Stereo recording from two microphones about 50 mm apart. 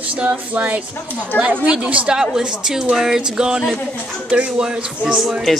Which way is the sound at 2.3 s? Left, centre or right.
Centre.